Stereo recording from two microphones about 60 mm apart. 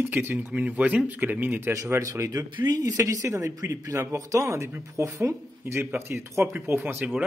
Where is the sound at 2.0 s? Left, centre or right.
Right.